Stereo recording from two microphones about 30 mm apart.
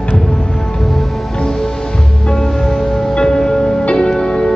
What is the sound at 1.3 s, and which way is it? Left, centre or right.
Music, left.